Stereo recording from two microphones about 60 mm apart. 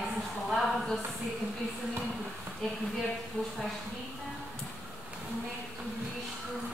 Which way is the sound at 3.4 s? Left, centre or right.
Left.